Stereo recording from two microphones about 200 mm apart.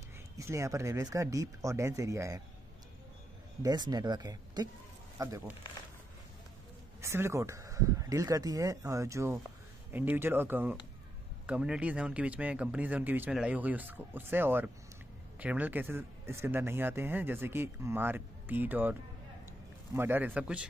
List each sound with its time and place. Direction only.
0.4 s speech: 15° right (ahead or behind)
3.6 s speech: 20° right (ahead or behind)
7.0 s speech: 15° right (ahead or behind)